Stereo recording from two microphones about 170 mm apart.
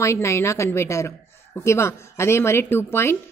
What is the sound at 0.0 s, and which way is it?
A woman's voice, 15° left (ahead or behind).